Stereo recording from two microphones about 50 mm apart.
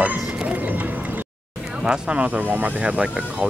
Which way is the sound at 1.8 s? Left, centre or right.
Right.